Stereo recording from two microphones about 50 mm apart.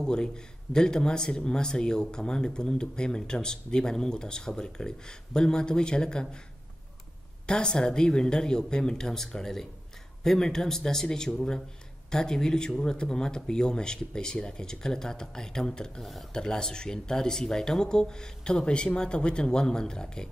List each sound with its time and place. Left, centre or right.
0.0 s a man's voice: centre
7.4 s speech: centre